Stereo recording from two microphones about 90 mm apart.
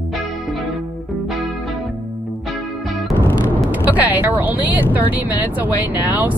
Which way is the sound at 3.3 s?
20° right (ahead or behind).